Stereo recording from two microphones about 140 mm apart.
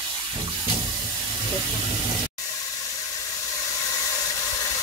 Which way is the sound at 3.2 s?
25° left (ahead or behind).